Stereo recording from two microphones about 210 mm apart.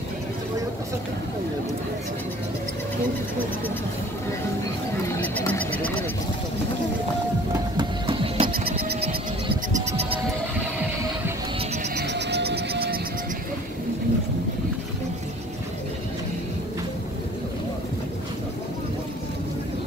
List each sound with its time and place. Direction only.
5.1 s a sound: 10° left (ahead or behind)
7.7 s music: 25° right (ahead or behind)
9.7 s music: 35° right (ahead or behind)
11.9 s wild animals: 55° right (ahead or behind)